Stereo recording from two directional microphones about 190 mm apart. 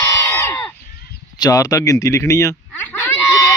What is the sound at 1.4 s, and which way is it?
Speech, 20° left (ahead or behind).